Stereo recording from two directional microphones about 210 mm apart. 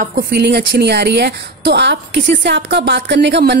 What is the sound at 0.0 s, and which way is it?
A woman's voice, 45° right (ahead or behind).